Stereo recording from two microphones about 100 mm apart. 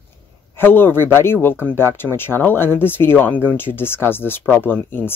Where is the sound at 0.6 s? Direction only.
20° left (ahead or behind).